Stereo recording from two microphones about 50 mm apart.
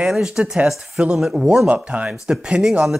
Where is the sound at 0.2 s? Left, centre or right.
Centre.